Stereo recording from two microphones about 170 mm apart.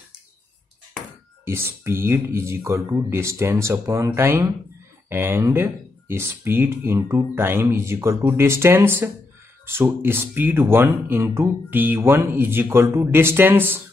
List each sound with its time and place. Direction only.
1.4 s speech: 15° right (ahead or behind)